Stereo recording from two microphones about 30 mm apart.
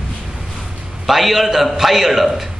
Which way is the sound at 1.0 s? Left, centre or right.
Centre.